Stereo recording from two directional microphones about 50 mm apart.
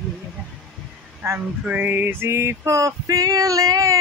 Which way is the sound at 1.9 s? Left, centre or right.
Right.